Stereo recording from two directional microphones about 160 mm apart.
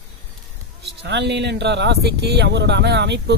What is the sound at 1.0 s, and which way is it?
Speech, 90° right.